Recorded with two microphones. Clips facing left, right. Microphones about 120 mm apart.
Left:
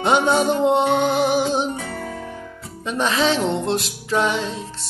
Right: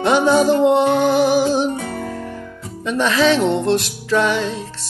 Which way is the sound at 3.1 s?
25° left (ahead or behind).